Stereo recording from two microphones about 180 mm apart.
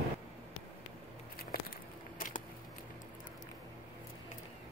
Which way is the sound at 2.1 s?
50° left (ahead or behind).